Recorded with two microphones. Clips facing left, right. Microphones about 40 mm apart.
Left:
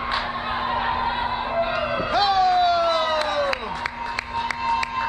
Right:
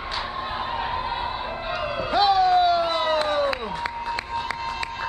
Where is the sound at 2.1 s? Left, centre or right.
Centre.